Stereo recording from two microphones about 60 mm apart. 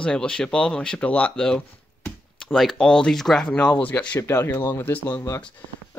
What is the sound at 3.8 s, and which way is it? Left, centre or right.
Speech, left.